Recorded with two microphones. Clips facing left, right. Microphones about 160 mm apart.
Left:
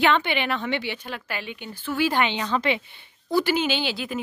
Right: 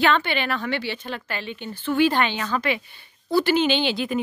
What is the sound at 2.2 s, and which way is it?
A woman's voice, 20° left (ahead or behind).